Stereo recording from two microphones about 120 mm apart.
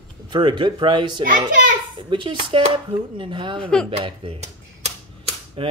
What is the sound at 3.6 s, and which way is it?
Speech, 5° left (ahead or behind).